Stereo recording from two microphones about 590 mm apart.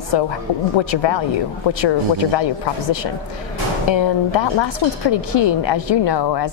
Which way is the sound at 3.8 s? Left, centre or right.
Left.